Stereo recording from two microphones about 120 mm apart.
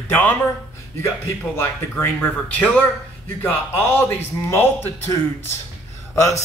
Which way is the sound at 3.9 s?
20° left (ahead or behind).